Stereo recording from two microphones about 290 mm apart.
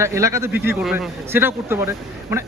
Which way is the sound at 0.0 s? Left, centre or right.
Centre.